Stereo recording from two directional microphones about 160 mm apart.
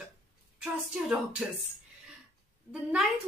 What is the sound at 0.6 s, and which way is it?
Speech, 5° right (ahead or behind).